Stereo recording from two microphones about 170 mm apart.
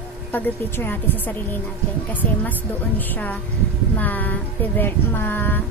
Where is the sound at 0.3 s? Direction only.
15° left (ahead or behind).